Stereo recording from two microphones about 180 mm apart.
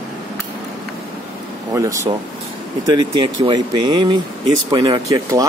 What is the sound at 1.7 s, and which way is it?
Speech, 20° right (ahead or behind).